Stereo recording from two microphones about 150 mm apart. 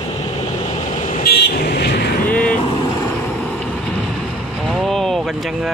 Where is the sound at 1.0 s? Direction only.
75° left (ahead or behind); by 1.9 s 90° left.